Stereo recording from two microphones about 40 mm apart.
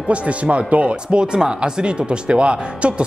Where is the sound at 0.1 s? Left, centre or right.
Right.